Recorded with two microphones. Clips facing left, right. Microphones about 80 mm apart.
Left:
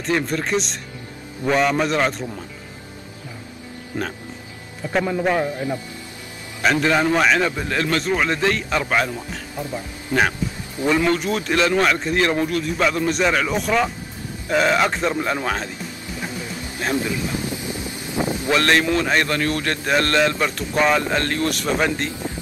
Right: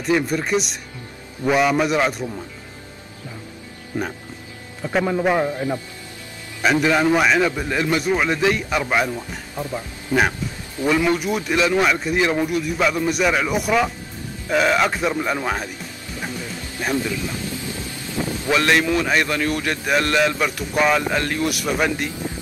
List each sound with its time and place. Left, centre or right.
0.0 s a man's voice: centre
3.9 s a man's voice: centre
6.6 s a man's voice: centre
11.1 s a man's voice: centre
16.9 s a sound: left
18.5 s a man's voice: centre
22.1 s a sound: left